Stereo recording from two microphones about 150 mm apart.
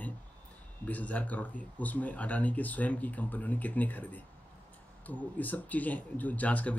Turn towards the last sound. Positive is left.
turn(degrees=10)  # may be behind; listen again after turning